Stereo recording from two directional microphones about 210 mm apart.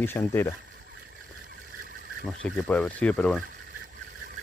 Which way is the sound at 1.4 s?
55° right (ahead or behind).